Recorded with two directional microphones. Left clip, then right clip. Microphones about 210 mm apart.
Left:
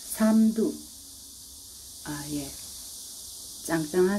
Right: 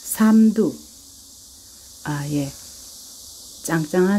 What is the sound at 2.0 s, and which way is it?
Speech, 50° right (ahead or behind).